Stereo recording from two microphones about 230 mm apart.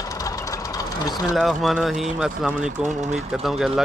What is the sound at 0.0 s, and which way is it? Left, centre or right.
Vehicle, centre.